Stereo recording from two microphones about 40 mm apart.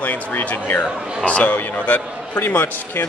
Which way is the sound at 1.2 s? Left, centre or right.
Left.